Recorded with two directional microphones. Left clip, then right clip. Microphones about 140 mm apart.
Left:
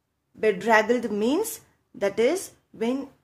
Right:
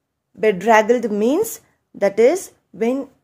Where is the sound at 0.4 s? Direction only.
35° right (ahead or behind).